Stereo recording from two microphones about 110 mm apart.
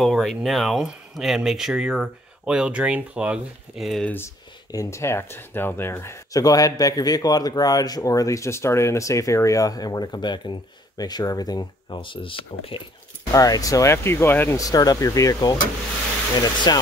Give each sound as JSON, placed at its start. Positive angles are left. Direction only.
{"t": 0.0, "sound": "speech", "side_deg": 0}
{"t": 4.0, "sound": "speech", "side_deg": 20}
{"t": 4.6, "sound": "speech", "side_deg": 30}
{"t": 13.3, "sound": "speech", "side_deg": 35}
{"t": 14.6, "sound": "speech", "side_deg": 35}
{"t": 16.7, "sound": "speech", "side_deg": 40}